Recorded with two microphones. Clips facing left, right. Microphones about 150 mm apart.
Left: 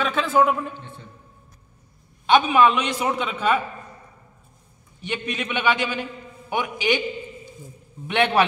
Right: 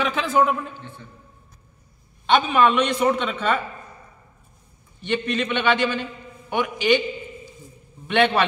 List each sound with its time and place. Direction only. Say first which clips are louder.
0.0 s a sound: even; centre (ahead or behind)
2.2 s a man's voice: left 1 dB; 5° left (ahead or behind)
5.0 s a man's voice: right 5 dB; 10° left (ahead or behind)
8.1 s a man's voice: right 1 dB; 10° left (ahead or behind)